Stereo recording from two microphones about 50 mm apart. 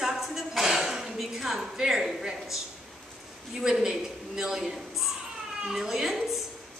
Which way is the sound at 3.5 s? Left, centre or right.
Centre.